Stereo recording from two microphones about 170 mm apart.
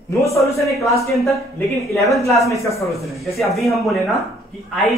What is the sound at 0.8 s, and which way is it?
Speech, 20° left (ahead or behind).